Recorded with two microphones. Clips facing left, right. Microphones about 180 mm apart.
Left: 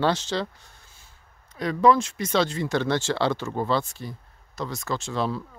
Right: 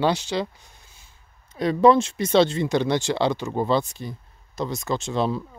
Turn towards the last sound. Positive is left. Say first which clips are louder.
# right 3 dB
turn(degrees=-20)  # may be behind; listen again after turning